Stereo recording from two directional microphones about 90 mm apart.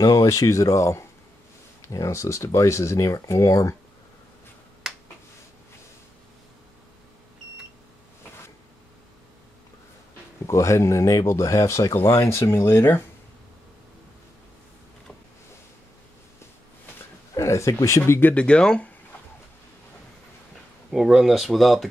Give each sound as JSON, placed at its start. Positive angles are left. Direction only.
{"t": 0.0, "sound": "speech", "side_deg": 45}
{"t": 10.4, "sound": "speech", "side_deg": 35}
{"t": 17.3, "sound": "speech", "side_deg": 35}
{"t": 18.3, "sound": "speech", "side_deg": 10}
{"t": 20.9, "sound": "speech", "side_deg": -5}